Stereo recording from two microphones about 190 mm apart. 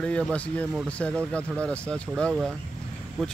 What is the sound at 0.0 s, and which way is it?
Speech, 5° left (ahead or behind).